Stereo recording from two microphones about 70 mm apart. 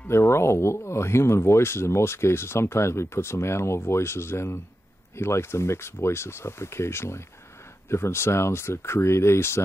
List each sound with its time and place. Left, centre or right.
0.1 s speech: left